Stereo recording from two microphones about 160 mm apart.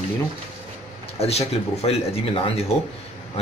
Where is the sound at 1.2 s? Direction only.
40° left (ahead or behind).